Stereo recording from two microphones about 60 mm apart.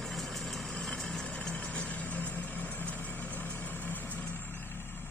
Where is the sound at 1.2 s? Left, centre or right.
Left.